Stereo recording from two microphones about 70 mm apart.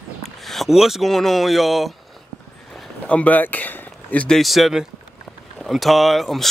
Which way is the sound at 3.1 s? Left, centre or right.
Left.